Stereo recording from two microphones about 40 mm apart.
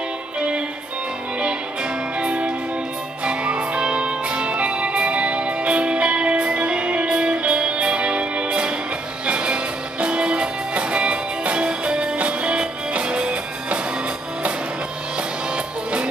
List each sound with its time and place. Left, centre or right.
2.1 s music: right
15.5 s music: right